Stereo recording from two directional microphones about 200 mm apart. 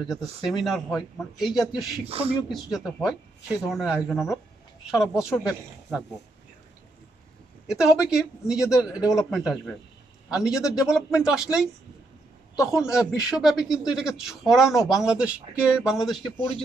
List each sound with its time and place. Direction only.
0.1 s speech: centre (ahead or behind)
2.0 s speech: 30° right (ahead or behind)
2.5 s speech: centre (ahead or behind)
7.6 s speech: 5° right (ahead or behind)